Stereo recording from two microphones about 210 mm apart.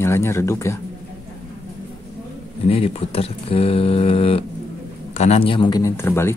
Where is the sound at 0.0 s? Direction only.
15° left (ahead or behind).